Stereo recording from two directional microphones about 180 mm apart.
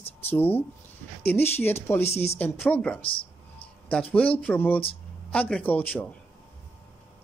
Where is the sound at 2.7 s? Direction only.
5° left (ahead or behind).